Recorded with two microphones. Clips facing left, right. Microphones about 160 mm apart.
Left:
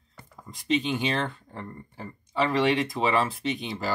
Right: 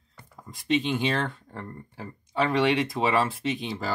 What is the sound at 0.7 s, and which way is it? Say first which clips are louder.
Speech: right 1 dB; centre (ahead or behind).